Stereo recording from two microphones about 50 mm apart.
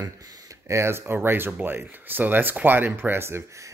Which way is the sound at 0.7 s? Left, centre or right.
Right.